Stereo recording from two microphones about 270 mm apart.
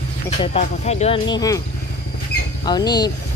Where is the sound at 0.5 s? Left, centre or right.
Left.